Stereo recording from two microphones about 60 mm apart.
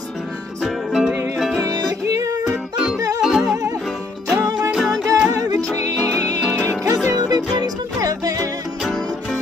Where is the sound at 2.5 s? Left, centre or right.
Centre.